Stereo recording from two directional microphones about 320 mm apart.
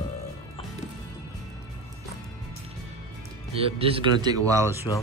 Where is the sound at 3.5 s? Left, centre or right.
Centre.